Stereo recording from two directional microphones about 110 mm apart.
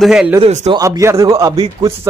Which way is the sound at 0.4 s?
75° right (ahead or behind).